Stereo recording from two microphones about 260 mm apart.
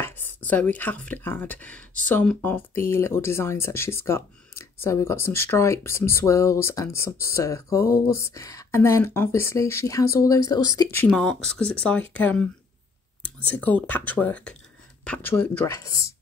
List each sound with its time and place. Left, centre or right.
0.0 s speech: centre